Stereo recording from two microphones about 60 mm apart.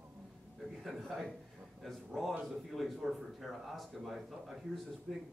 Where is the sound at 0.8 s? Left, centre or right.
Centre.